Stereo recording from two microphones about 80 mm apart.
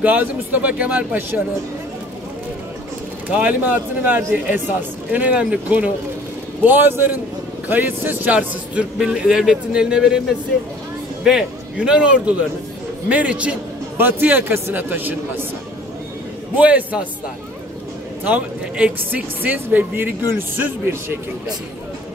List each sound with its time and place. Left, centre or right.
0.0 s speech: right
3.3 s a man's voice: centre
11.2 s a man's voice: centre; by 15.4 s right
16.5 s speech: centre
18.2 s speech: centre